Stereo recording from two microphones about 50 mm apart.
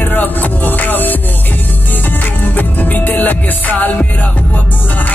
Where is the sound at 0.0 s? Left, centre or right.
Left.